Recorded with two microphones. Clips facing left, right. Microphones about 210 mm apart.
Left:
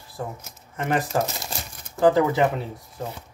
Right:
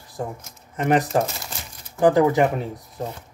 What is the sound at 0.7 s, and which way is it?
Speech, 20° right (ahead or behind).